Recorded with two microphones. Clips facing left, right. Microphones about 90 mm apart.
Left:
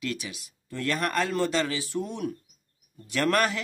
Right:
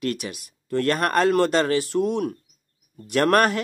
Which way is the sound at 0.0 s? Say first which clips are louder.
Right 6 dB; 55° right (ahead or behind).